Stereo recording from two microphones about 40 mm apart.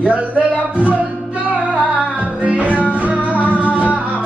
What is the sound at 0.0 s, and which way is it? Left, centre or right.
Music, right.